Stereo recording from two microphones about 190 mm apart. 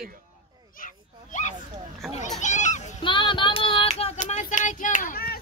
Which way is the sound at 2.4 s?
40° left (ahead or behind).